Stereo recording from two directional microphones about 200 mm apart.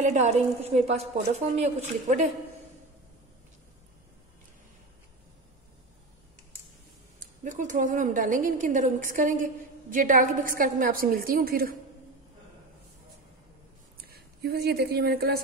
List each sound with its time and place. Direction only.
0.0 s a woman's voice: 35° right (ahead or behind)
7.4 s a woman's voice: 40° right (ahead or behind)
13.9 s speech: 50° right (ahead or behind)